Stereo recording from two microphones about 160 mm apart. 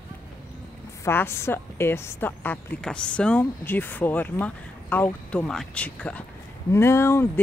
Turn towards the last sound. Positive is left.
turn(degrees=15)  # may be behind; listen again after turning